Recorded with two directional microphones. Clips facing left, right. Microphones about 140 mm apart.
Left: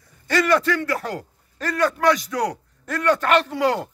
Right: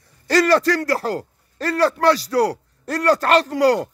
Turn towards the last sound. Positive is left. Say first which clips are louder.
# right 4 dB
turn(degrees=-40)  # may be behind; listen again after turning